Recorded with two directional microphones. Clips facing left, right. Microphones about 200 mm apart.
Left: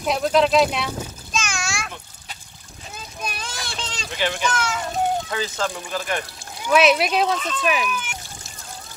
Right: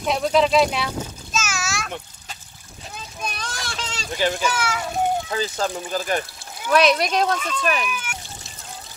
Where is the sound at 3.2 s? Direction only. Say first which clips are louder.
Right 1 dB; 5° left (ahead or behind).